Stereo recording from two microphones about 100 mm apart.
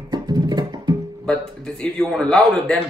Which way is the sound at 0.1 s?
45° right (ahead or behind).